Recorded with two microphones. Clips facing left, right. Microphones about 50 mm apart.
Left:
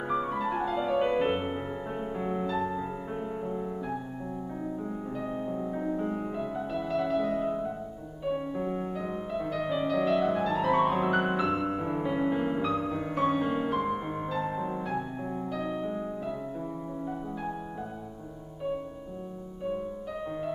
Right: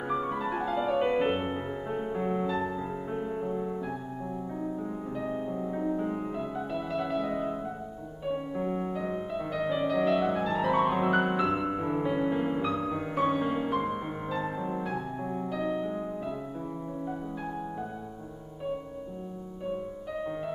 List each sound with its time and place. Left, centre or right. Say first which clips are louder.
0.1 s music: left 1 dB; centre